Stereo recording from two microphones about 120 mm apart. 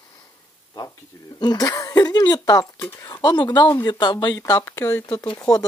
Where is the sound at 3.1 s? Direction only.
35° left (ahead or behind).